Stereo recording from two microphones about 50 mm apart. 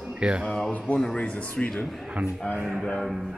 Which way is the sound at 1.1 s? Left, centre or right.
Left.